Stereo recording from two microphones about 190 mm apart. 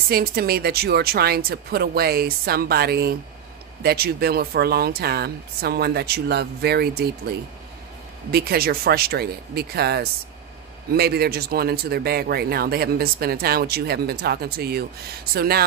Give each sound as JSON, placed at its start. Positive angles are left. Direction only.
{"t": 0.1, "sound": "speech", "side_deg": -55}
{"t": 8.3, "sound": "speech", "side_deg": -55}